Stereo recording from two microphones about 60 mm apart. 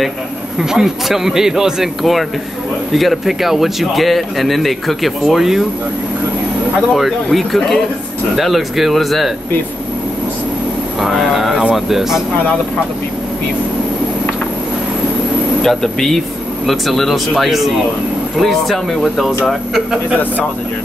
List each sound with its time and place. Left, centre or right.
0.6 s speech: centre
6.9 s speech: centre
11.0 s speech: centre
15.6 s speech: centre